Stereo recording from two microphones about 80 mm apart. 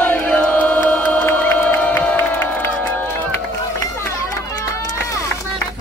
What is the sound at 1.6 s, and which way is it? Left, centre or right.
Crowd, left.